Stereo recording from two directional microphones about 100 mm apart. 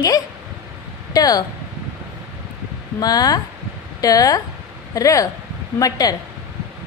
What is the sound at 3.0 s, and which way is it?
A woman's voice, 40° left (ahead or behind).